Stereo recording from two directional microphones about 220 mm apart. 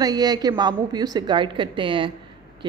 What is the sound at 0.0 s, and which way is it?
A woman's voice, 15° right (ahead or behind).